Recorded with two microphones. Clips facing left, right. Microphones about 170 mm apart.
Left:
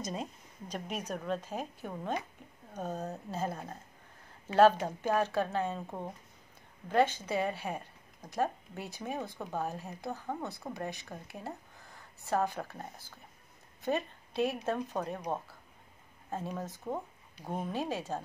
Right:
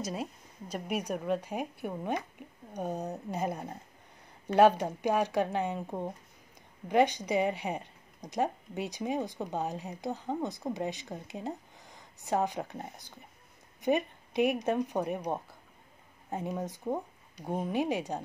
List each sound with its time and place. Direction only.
0.0 s a woman's voice: 5° right (ahead or behind)